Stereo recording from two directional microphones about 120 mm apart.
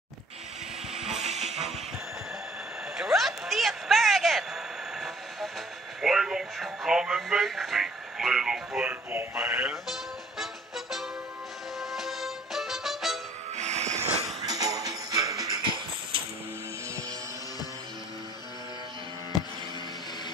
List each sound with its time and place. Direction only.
0.9 s music: 5° right (ahead or behind)
1.2 s music: 70° right (ahead or behind)
3.0 s a sound: centre (ahead or behind)
5.9 s speech: 5° right (ahead or behind)
9.1 s speech: 20° right (ahead or behind)
10.4 s music: centre (ahead or behind)
13.6 s music: 70° right (ahead or behind)
14.4 s music: 30° right (ahead or behind)